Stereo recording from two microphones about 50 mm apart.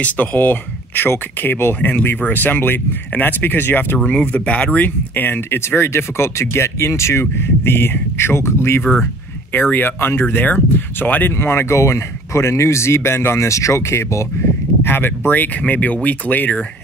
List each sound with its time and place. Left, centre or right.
0.0 s speech: left
4.0 s speech: left
5.9 s speech: left
7.3 s speech: left
9.5 s speech: left
11.3 s speech: left
11.7 s speech: left